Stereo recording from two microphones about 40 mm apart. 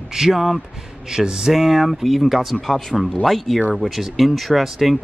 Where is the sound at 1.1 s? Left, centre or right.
Centre.